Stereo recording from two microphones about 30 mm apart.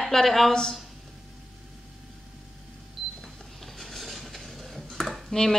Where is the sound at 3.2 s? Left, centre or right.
Centre.